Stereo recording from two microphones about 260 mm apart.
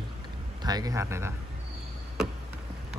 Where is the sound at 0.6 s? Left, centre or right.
Centre.